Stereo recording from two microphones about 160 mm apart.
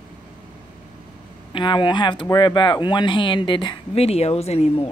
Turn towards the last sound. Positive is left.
turn(degrees=40)  # may be behind; listen again after turning